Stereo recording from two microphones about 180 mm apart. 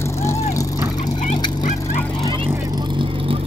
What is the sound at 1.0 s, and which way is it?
Vehicle, 40° left (ahead or behind).